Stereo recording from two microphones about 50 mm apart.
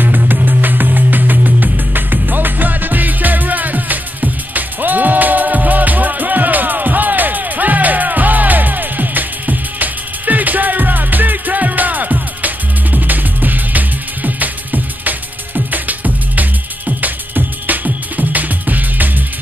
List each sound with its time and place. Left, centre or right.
0.0 s music: right